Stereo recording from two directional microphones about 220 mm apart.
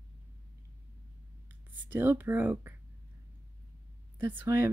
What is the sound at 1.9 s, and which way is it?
Speech, 10° right (ahead or behind).